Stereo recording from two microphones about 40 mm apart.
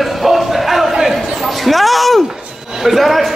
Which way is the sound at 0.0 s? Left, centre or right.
Centre.